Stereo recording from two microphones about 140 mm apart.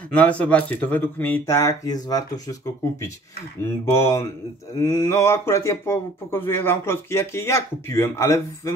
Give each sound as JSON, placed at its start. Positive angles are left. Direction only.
{"t": 0.1, "sound": "a man's voice", "side_deg": 10}